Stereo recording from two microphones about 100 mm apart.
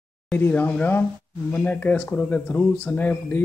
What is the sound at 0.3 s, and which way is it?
Speech, 15° left (ahead or behind).